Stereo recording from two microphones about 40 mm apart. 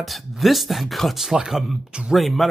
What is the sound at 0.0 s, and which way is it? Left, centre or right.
Speech, centre.